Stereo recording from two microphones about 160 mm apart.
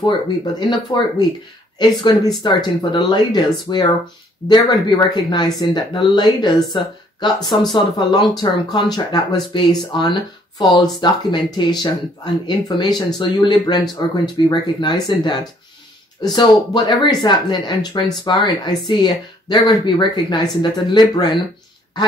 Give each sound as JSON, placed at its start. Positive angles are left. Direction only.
{"t": 0.6, "sound": "speech", "side_deg": 30}